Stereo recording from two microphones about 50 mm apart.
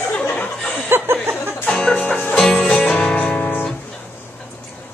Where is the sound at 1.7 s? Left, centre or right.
Centre.